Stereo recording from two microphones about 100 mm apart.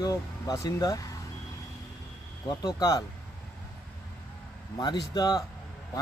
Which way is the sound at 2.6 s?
40° left (ahead or behind).